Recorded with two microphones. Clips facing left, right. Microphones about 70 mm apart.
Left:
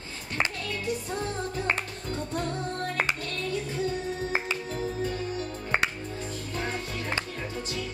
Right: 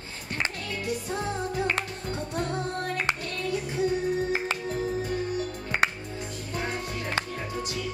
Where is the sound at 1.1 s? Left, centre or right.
Centre.